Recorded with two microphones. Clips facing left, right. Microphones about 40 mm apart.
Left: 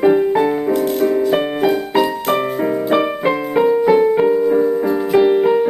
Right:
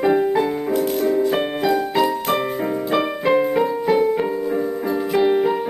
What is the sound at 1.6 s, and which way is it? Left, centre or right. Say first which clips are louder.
Music: left 1 dB; left.